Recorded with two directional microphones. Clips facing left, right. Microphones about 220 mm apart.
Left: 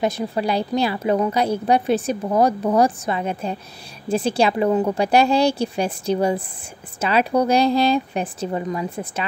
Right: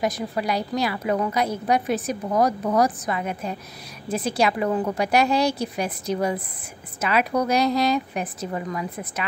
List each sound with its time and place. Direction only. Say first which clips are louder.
0.0 s a woman's voice: left 3 dB; 25° left (ahead or behind)